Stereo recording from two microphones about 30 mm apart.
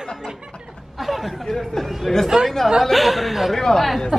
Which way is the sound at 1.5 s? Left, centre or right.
Centre.